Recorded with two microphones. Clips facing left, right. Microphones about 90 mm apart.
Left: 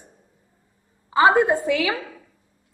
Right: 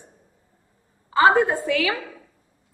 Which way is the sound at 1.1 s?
15° left (ahead or behind).